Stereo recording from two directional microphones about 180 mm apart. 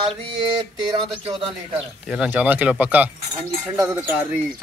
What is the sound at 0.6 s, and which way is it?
Speech, 30° right (ahead or behind).